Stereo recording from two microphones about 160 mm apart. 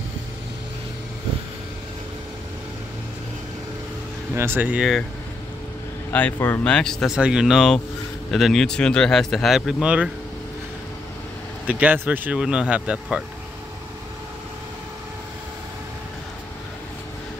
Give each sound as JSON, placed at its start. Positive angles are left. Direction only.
{"t": 4.4, "sound": "speech", "side_deg": -10}
{"t": 6.1, "sound": "speech", "side_deg": 10}
{"t": 11.6, "sound": "speech", "side_deg": -10}